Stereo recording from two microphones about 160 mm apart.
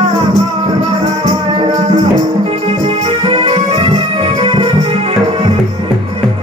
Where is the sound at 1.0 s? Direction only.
40° right (ahead or behind).